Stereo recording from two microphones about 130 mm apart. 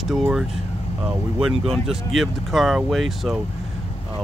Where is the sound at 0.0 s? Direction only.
Centre (ahead or behind).